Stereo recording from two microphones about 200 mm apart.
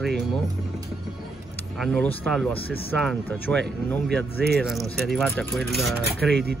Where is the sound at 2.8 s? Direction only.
5° left (ahead or behind).